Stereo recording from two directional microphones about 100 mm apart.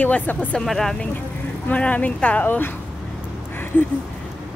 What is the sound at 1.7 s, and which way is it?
Speech, 15° left (ahead or behind).